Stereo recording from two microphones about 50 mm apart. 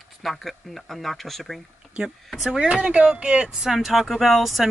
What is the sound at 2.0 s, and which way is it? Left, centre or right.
Speech, centre.